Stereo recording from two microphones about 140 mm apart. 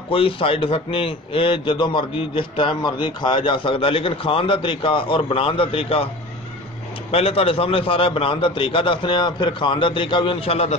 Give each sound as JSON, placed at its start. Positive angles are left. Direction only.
{"t": 0.1, "sound": "a man's voice", "side_deg": 40}
{"t": 7.1, "sound": "a man's voice", "side_deg": 45}